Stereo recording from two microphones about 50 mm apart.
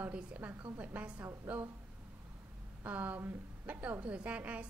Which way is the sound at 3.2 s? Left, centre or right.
Right.